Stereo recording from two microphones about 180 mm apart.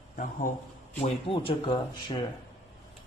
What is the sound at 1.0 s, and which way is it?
Speech, 30° left (ahead or behind).